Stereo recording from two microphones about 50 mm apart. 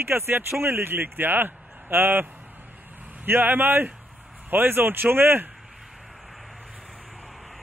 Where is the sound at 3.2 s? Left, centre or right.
Right.